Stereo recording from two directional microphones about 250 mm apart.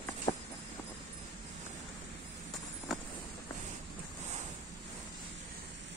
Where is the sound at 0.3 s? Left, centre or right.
Centre.